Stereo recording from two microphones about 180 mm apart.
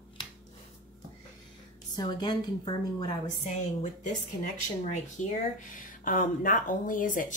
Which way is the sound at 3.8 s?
45° left (ahead or behind).